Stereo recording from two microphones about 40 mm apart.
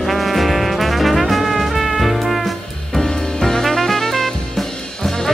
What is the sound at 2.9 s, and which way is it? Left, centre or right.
Music, centre.